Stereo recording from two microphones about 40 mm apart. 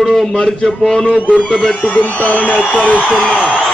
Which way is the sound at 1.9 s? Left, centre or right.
Left.